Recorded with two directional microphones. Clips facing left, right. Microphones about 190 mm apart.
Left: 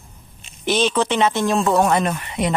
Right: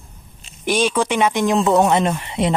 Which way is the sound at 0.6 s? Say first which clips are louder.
Even; 10° right (ahead or behind).